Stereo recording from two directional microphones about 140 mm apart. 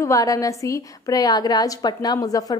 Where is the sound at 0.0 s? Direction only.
25° left (ahead or behind).